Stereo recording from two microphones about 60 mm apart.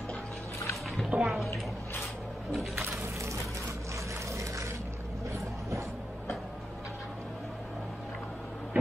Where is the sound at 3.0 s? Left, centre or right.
Right.